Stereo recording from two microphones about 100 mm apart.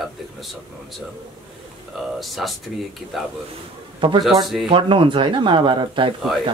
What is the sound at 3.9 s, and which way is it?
A man's voice, 50° right (ahead or behind).